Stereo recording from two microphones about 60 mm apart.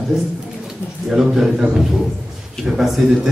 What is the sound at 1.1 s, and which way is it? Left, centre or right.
A man's voice, centre.